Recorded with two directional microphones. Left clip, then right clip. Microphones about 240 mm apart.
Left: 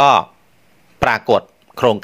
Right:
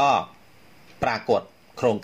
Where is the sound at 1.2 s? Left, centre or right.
Left.